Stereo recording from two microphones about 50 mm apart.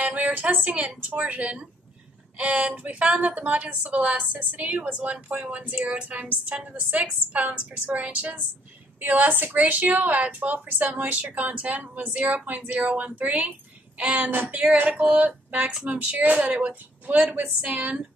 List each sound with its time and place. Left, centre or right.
0.1 s a woman's voice: right